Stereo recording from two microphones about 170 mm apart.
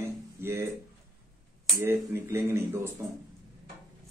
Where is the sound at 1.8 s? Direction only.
15° right (ahead or behind).